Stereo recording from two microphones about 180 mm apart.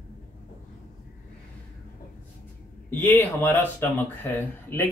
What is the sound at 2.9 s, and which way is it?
Speech, 10° left (ahead or behind).